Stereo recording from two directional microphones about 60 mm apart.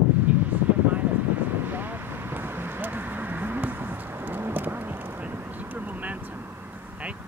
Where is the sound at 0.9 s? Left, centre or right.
Right.